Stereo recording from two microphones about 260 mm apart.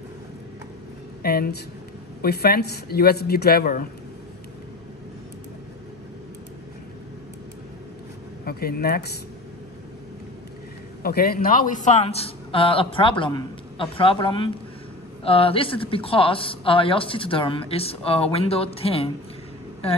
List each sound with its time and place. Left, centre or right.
1.2 s speech: left
8.5 s speech: left
11.0 s a woman's voice: left